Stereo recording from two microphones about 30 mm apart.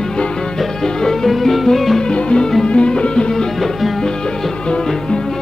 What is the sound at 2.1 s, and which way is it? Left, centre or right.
Music, left.